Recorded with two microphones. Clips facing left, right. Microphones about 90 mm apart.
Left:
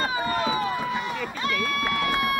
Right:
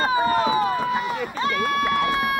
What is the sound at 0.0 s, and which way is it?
Run, 30° right (ahead or behind).